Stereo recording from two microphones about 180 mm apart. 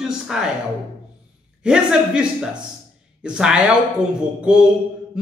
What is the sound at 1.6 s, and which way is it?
A man's voice, 5° right (ahead or behind).